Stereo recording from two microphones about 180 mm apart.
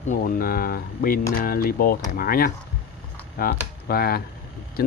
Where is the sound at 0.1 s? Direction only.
50° left (ahead or behind).